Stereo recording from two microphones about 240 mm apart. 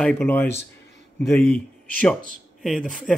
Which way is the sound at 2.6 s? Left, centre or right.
Centre.